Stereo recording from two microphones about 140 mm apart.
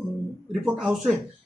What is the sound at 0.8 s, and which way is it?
Speech, centre (ahead or behind).